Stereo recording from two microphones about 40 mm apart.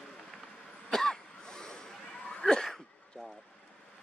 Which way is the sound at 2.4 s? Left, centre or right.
Centre.